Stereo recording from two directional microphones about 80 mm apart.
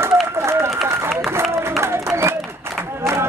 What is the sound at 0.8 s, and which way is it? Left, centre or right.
Run, right.